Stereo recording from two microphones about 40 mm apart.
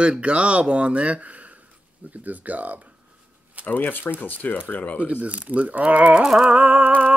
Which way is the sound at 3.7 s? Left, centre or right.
Left.